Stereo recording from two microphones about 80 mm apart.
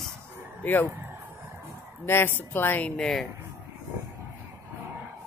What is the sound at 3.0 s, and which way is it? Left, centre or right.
Speech, centre.